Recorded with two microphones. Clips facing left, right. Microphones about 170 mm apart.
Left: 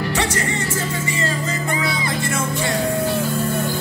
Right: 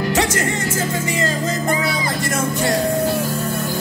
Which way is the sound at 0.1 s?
45° right (ahead or behind).